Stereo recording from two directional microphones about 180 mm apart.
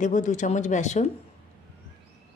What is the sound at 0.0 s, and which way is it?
Speech, 45° left (ahead or behind).